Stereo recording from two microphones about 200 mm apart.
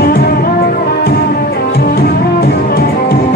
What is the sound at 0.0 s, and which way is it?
Music, 50° left (ahead or behind).